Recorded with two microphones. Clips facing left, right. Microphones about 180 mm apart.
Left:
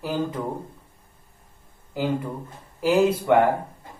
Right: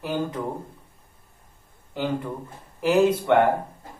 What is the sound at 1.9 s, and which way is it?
Speech, 5° left (ahead or behind).